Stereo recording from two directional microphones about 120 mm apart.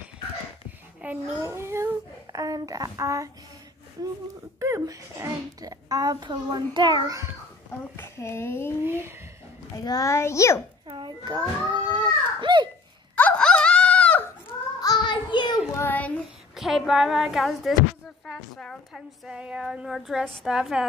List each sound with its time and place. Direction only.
1.0 s babbling: 15° right (ahead or behind)
1.4 s a child's voice: 20° right (ahead or behind)
4.6 s a child's voice: 25° right (ahead or behind)
7.9 s speech: 20° left (ahead or behind)
8.8 s a child's voice: 20° right (ahead or behind)
9.8 s speech: 30° left (ahead or behind)
10.9 s a sound: 40° right (ahead or behind)
13.1 s wail: 10° left (ahead or behind)
14.8 s child singing: 35° left (ahead or behind)
15.7 s child singing: 15° left (ahead or behind)
16.5 s a woman's voice: centre (ahead or behind)